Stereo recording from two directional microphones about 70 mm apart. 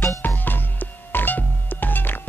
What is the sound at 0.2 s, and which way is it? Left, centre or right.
Music, left.